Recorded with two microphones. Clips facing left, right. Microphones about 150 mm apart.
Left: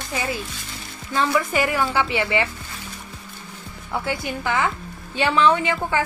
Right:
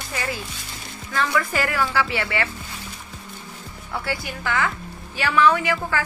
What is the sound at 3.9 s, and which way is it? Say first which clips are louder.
A woman's voice: left 3 dB; 20° left (ahead or behind).